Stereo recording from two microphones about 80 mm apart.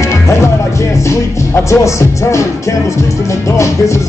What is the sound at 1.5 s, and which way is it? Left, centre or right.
Speech, left.